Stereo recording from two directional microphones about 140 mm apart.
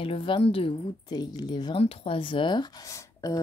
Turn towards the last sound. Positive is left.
turn(degrees=25)  # may be behind; listen again after turning